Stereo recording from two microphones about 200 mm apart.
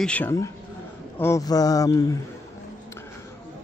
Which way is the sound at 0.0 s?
10° left (ahead or behind).